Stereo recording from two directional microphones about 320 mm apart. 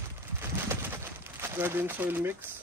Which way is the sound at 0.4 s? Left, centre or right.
Centre.